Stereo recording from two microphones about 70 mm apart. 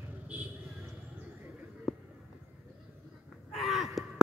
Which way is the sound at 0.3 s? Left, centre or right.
Right.